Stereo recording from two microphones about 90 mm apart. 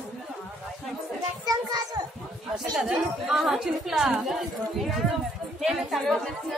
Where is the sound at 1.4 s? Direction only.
45° right (ahead or behind).